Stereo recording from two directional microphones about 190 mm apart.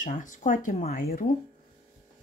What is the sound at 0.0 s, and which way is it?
Speech, 45° left (ahead or behind).